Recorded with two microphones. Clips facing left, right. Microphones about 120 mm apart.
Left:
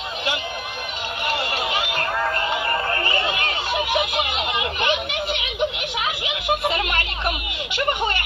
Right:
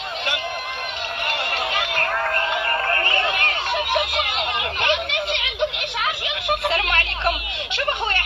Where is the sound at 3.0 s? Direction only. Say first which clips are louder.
Right 1 dB; 10° left (ahead or behind).